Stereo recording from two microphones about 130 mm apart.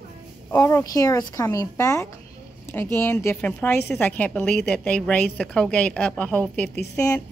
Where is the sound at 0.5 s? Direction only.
25° left (ahead or behind); by 6.4 s 10° left (ahead or behind).